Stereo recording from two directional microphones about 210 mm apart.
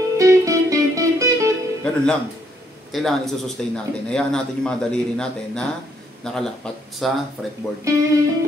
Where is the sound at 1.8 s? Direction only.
5° left (ahead or behind).